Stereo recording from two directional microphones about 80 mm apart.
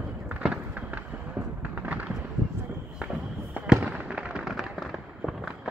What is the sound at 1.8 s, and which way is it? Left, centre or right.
Fireworks, centre.